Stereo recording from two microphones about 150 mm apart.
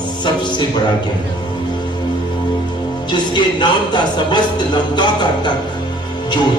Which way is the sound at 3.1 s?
30° left (ahead or behind).